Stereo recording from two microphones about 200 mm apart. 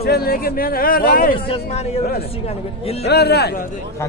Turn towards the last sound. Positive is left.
turn(degrees=50)  # may be behind; listen again after turning